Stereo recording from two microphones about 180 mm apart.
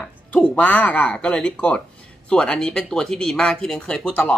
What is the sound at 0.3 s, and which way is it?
Speech, 10° left (ahead or behind).